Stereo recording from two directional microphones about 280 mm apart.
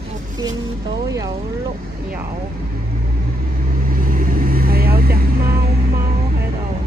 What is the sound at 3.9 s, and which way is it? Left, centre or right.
Vehicle, right.